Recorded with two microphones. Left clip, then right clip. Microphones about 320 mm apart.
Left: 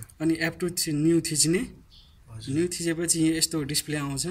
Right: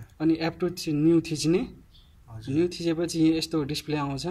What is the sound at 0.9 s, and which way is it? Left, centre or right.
Speech, centre.